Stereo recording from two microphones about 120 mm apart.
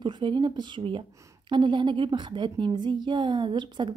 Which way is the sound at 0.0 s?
40° right (ahead or behind).